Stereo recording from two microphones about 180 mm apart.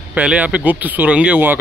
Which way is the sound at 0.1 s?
5° right (ahead or behind).